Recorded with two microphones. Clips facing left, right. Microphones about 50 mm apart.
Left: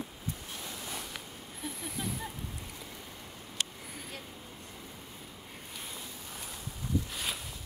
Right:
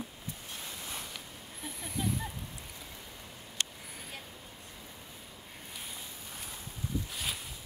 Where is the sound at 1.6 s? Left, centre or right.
Centre.